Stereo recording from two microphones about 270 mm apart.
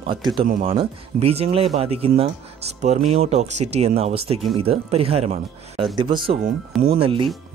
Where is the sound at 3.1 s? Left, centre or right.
Right.